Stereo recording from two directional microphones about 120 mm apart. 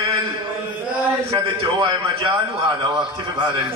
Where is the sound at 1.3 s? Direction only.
35° right (ahead or behind).